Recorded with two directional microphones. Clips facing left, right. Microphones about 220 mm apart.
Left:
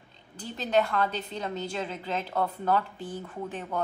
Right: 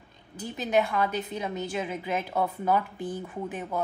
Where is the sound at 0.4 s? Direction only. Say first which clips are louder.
Right 1 dB; 10° right (ahead or behind).